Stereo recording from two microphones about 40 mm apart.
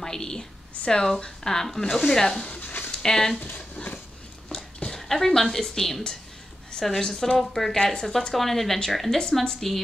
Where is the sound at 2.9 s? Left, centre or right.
Centre.